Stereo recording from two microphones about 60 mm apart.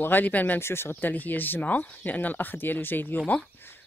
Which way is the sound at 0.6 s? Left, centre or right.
Left.